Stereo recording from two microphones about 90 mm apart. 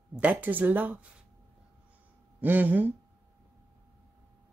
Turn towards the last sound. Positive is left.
turn(degrees=-20)  # may be behind; listen again after turning